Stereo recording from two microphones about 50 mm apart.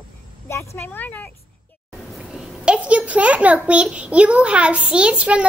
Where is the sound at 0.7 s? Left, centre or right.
Left.